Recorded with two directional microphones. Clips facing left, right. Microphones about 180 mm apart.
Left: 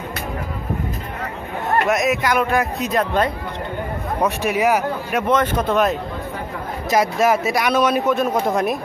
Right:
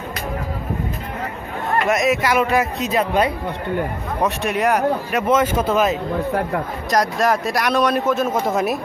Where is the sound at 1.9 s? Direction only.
Centre (ahead or behind).